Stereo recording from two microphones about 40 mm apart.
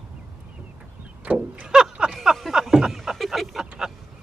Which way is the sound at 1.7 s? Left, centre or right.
Centre.